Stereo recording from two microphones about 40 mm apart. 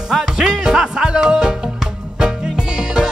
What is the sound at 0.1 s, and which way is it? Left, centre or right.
Music, centre.